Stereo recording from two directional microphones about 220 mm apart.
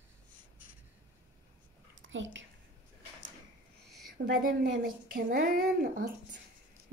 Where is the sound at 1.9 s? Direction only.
60° right (ahead or behind).